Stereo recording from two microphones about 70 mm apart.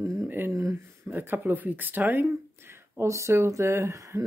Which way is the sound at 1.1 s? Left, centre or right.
Right.